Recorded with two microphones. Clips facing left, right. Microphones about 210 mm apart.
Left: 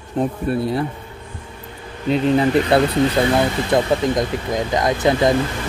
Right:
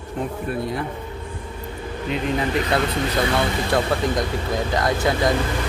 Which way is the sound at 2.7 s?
30° left (ahead or behind).